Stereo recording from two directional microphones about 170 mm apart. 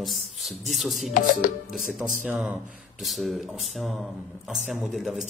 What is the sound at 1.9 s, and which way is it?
Speech, 10° right (ahead or behind).